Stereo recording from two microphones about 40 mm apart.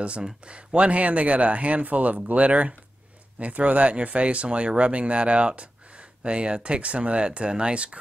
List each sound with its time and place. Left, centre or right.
0.5 s speech: right